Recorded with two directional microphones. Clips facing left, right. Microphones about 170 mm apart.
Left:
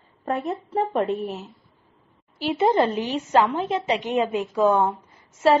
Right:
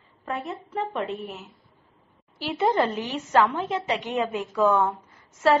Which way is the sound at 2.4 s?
25° left (ahead or behind).